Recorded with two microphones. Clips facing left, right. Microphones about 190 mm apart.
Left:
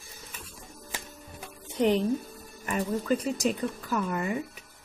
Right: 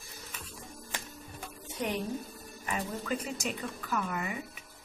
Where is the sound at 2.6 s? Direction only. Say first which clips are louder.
Left 6 dB; 45° left (ahead or behind).